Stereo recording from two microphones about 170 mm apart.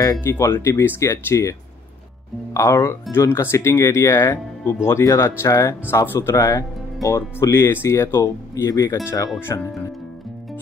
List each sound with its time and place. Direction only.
0.0 s speech: 15° left (ahead or behind)
2.5 s speech: 15° left (ahead or behind)